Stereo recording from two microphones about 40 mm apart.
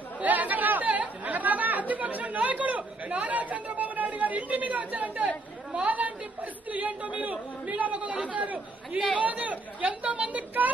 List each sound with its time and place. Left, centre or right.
0.2 s chatter: right
5.9 s a woman's voice: right